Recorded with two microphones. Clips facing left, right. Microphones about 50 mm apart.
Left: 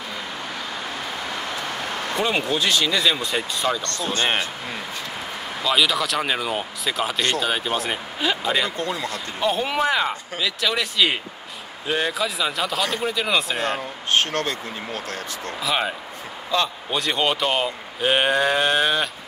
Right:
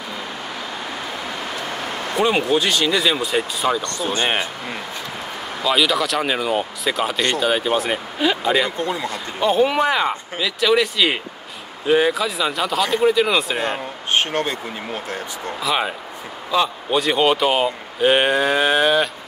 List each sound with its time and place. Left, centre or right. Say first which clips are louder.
2.1 s speech: right 5 dB; centre
8.7 s speech: right 3 dB; centre
9.0 s speech: right 3 dB; centre
13.6 s speech: right 2 dB; centre
15.6 s speech: right 2 dB; centre